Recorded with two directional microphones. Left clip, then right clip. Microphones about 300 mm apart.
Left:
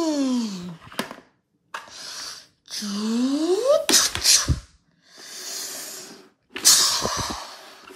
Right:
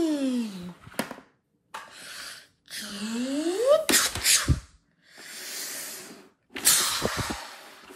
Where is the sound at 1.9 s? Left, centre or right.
Centre.